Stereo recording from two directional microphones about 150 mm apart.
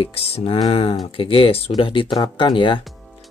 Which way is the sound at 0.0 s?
40° left (ahead or behind).